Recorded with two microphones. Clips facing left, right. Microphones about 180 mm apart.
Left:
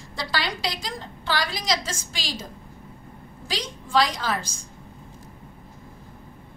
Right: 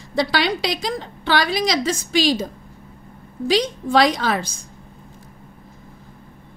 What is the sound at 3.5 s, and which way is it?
A woman's voice, 65° right (ahead or behind).